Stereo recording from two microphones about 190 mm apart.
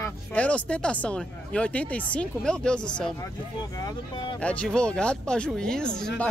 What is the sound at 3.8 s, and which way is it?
Speech, 20° left (ahead or behind).